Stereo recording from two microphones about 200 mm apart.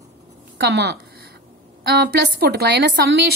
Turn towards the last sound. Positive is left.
turn(degrees=-55)  # may be behind; listen again after turning